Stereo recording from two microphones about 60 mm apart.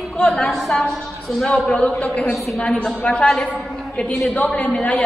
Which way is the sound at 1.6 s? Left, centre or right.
Left.